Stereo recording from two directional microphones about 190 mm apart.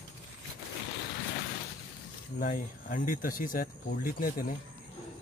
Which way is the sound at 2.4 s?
45° left (ahead or behind).